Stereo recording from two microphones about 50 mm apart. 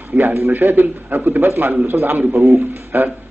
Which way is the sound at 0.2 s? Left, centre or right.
Right.